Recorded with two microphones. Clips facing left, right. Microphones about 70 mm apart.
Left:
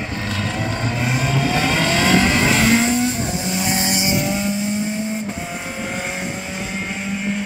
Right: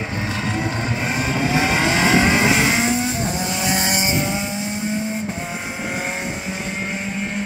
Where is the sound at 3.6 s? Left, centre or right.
Right.